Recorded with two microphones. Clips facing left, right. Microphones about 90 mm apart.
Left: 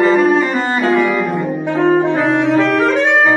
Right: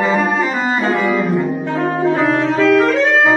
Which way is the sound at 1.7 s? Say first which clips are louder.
Left 4 dB; 20° left (ahead or behind).